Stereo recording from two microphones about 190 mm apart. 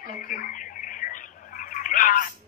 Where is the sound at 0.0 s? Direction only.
45° left (ahead or behind).